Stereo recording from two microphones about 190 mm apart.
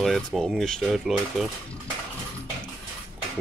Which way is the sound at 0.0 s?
Centre (ahead or behind).